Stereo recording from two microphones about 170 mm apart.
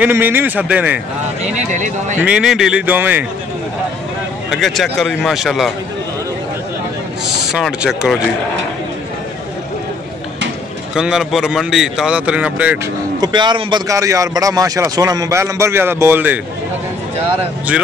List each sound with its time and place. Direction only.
0.0 s a man's voice: 10° right (ahead or behind)
1.7 s a man's voice: 45° right (ahead or behind)
2.2 s a man's voice: 5° right (ahead or behind)
4.5 s a man's voice: centre (ahead or behind)
7.2 s speech: 5° right (ahead or behind)
11.0 s a man's voice: 5° right (ahead or behind)
13.2 s a man's voice: 25° right (ahead or behind)